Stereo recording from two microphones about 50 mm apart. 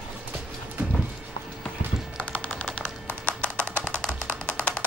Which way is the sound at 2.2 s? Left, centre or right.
Left.